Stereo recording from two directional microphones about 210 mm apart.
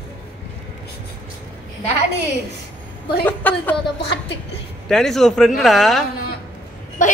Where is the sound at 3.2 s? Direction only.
10° left (ahead or behind).